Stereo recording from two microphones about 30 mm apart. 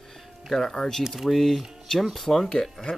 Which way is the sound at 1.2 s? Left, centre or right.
Centre.